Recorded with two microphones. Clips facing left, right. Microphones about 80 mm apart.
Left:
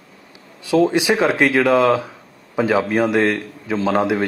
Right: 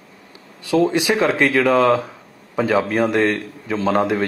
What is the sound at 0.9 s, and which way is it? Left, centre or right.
Speech, left.